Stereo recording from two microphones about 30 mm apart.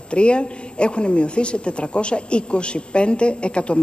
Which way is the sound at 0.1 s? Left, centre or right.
Left.